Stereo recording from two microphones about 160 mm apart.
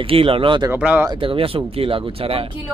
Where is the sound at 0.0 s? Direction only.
35° right (ahead or behind).